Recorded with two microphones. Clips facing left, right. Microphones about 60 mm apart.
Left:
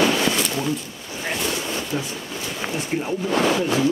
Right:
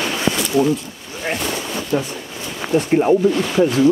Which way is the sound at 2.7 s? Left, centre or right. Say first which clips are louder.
Right 15 dB; right.